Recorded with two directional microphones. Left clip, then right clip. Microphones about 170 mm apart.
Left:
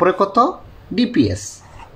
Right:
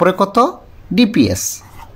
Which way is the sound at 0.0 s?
50° right (ahead or behind).